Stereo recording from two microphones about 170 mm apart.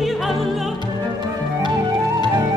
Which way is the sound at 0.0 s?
Centre (ahead or behind).